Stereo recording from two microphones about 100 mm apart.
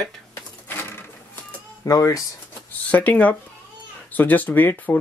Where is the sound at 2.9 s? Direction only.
15° left (ahead or behind).